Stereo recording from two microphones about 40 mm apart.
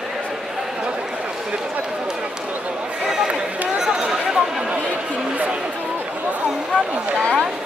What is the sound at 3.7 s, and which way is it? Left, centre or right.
Chatter, centre.